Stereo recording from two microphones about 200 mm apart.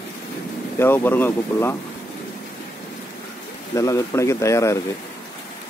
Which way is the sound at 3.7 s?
15° left (ahead or behind).